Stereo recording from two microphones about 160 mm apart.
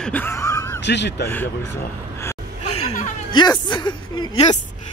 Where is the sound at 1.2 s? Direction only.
15° left (ahead or behind).